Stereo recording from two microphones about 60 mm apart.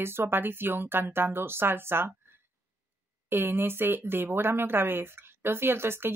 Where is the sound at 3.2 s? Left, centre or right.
Right.